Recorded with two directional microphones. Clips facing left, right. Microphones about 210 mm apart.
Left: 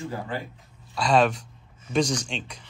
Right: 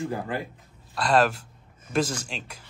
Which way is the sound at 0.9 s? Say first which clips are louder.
Left 1 dB; centre (ahead or behind).